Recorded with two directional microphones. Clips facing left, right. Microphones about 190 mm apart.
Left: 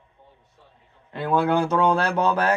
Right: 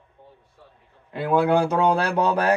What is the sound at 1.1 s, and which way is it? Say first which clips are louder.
Speech: right 2 dB; 15° right (ahead or behind).